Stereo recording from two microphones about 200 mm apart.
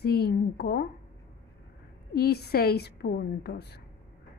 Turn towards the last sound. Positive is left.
turn(degrees=55)  # may be behind; listen again after turning